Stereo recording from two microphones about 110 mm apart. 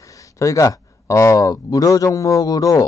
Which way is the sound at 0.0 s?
30° left (ahead or behind).